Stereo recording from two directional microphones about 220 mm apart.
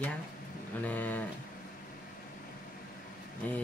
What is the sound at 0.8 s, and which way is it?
Speech, 5° left (ahead or behind).